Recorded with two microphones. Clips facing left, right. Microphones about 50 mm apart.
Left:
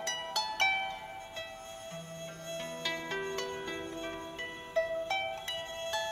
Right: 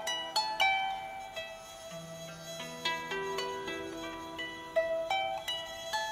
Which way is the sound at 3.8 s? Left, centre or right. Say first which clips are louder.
Left 1 dB; left.